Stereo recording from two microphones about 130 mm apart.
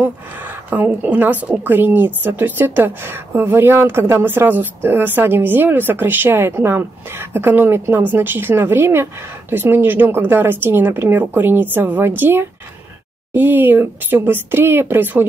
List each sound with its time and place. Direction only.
0.0 s a woman's voice: 10° right (ahead or behind)